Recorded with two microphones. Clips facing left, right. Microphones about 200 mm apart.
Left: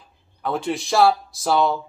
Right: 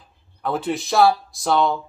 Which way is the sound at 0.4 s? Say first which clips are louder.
Right 1 dB; centre (ahead or behind).